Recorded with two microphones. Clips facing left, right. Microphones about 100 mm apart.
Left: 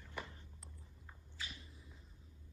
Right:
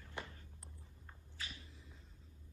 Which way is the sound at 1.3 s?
15° left (ahead or behind).